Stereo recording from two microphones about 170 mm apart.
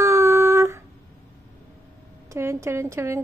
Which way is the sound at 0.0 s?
15° right (ahead or behind).